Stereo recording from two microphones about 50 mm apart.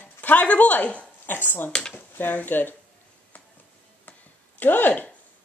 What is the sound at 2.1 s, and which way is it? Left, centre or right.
Speech, left.